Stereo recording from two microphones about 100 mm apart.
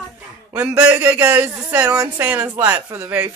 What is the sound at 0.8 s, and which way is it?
Speech, 20° right (ahead or behind).